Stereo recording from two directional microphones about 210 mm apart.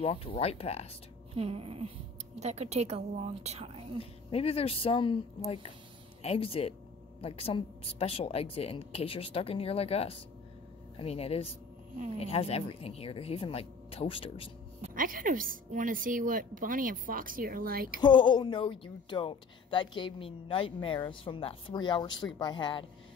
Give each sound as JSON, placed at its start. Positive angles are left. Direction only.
{"t": 0.0, "sound": "a woman's voice", "side_deg": 25}
{"t": 1.3, "sound": "a sound", "side_deg": -30}
{"t": 2.4, "sound": "a woman's voice", "side_deg": -30}
{"t": 4.0, "sound": "a woman's voice", "side_deg": 30}
{"t": 14.8, "sound": "a woman's voice", "side_deg": -40}
{"t": 18.0, "sound": "a woman's voice", "side_deg": 25}